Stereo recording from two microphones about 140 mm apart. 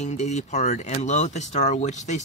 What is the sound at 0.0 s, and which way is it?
Speech, 55° left (ahead or behind).